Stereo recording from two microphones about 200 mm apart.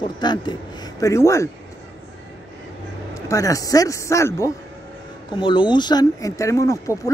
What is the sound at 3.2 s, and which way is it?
Speech, 15° left (ahead or behind).